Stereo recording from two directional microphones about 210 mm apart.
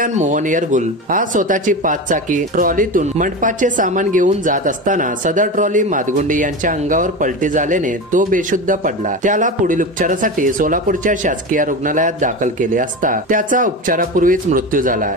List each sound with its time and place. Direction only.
0.0 s speech: 35° right (ahead or behind)